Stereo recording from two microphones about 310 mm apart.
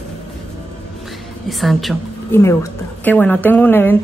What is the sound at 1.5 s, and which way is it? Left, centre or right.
A woman's voice, centre.